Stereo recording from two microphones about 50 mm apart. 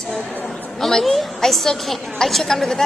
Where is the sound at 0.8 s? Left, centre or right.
Centre.